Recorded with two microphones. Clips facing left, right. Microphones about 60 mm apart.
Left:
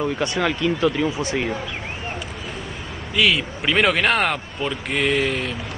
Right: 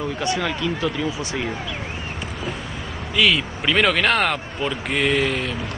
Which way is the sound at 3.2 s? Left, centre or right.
Centre.